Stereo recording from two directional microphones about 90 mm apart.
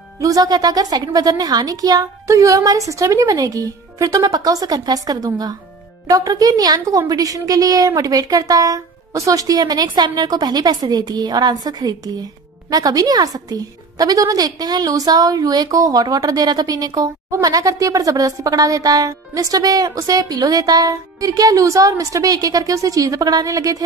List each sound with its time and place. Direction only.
0.2 s a woman's voice: 45° right (ahead or behind)